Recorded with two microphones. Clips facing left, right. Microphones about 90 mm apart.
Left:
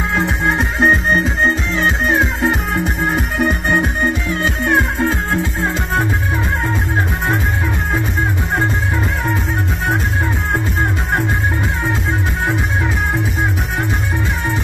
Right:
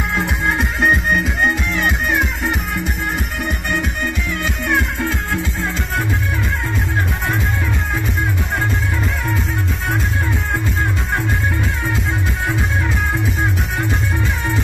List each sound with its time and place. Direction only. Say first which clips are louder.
0.1 s music: left 3 dB; 20° left (ahead or behind)